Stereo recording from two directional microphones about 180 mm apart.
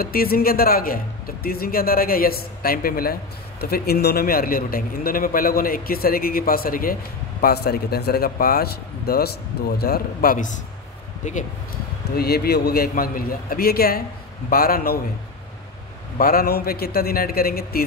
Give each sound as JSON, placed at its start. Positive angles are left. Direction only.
{"t": 0.0, "sound": "a man's voice", "side_deg": 55}
{"t": 12.2, "sound": "a man's voice", "side_deg": 60}
{"t": 16.2, "sound": "a man's voice", "side_deg": 55}